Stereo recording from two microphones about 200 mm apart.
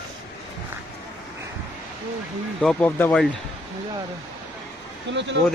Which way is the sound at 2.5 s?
5° left (ahead or behind).